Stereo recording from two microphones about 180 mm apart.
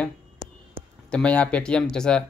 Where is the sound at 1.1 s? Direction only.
5° left (ahead or behind).